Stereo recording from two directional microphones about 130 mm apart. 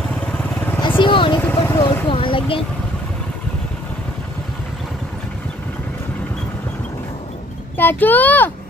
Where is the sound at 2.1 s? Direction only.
40° left (ahead or behind).